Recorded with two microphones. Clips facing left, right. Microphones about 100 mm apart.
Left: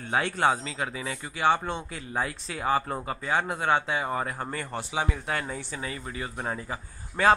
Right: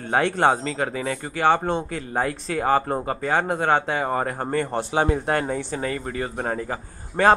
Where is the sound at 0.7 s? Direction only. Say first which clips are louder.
Right 7 dB; 45° right (ahead or behind).